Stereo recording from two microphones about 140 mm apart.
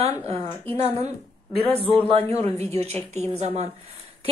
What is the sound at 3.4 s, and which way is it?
Speech, 50° right (ahead or behind).